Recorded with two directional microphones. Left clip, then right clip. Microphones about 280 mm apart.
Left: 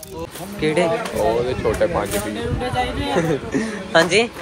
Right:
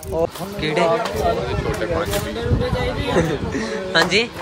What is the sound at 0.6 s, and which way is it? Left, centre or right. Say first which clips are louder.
Speech: left 1 dB; centre.